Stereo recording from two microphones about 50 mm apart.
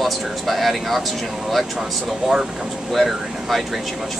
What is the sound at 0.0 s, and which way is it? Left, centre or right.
Speech, centre.